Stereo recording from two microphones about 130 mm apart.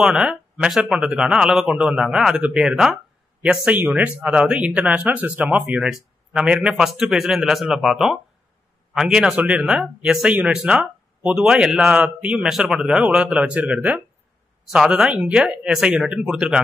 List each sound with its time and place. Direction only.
0.0 s speech: 5° right (ahead or behind)